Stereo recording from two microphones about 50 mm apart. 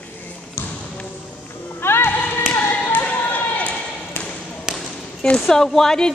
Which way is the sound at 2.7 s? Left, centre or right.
Left.